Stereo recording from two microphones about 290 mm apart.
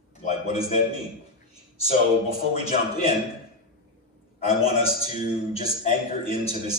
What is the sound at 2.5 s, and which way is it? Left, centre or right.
Speech, left.